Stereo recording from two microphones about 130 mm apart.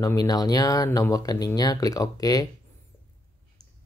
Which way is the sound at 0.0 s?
30° left (ahead or behind).